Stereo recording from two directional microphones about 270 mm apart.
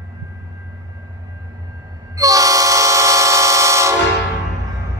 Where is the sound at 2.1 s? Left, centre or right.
Centre.